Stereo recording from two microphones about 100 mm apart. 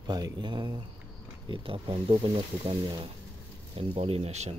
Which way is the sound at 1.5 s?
60° right (ahead or behind).